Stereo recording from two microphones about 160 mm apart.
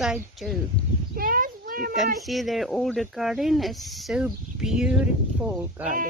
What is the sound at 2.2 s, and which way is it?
Speech, centre (ahead or behind).